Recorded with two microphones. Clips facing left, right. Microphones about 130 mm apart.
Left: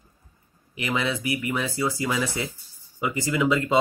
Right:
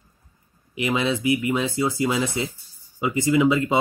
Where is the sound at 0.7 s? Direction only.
25° right (ahead or behind).